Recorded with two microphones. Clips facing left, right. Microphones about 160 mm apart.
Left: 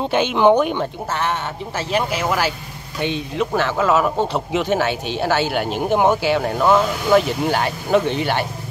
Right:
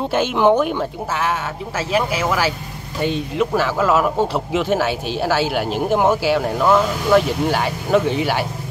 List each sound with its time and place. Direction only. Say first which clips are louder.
0.1 s speech: left 1 dB; 5° right (ahead or behind)